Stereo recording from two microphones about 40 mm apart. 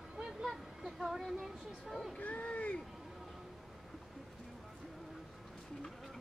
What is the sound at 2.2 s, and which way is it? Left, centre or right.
Speech, left.